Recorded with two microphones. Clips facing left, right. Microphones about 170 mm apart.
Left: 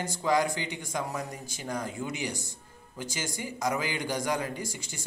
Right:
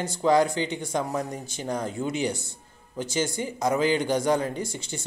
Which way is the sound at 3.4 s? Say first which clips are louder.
Right 4 dB; 25° right (ahead or behind).